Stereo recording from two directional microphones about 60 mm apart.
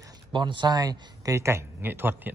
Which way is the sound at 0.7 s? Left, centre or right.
Right.